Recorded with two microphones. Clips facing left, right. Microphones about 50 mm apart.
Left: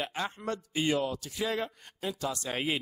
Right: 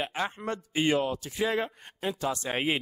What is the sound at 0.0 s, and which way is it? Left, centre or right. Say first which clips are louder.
A man's voice: right 2 dB; right.